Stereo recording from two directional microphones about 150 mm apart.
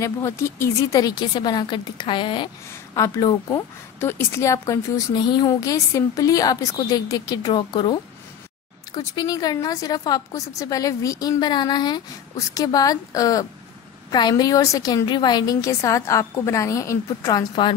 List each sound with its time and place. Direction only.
0.0 s a woman's voice: 20° left (ahead or behind)